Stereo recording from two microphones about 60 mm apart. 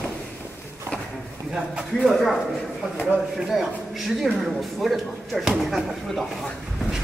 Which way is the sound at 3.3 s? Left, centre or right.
Centre.